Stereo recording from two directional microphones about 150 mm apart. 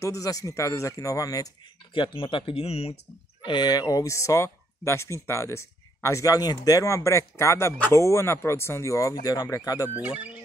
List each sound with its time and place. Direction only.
0.0 s speech: 20° left (ahead or behind); by 3.0 s 40° left (ahead or behind)
3.4 s speech: 30° left (ahead or behind)
9.9 s speech: 10° right (ahead or behind)